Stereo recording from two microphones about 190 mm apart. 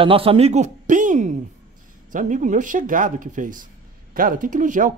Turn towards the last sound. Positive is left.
turn(degrees=-40)  # may be behind; listen again after turning